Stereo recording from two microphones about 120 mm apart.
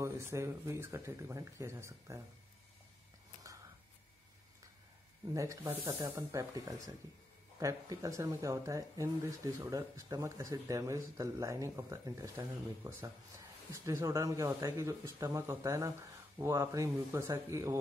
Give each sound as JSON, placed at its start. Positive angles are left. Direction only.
{"t": 0.0, "sound": "speech", "side_deg": -25}
{"t": 5.3, "sound": "speech", "side_deg": -25}